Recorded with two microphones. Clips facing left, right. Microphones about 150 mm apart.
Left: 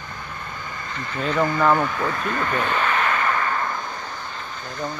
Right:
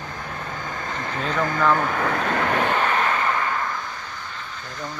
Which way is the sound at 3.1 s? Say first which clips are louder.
Even; 15° right (ahead or behind).